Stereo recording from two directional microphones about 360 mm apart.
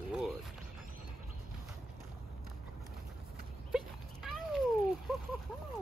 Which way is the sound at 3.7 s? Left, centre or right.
Centre.